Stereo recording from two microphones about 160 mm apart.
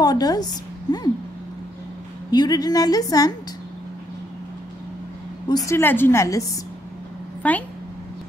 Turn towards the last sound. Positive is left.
turn(degrees=10)  # may be behind; listen again after turning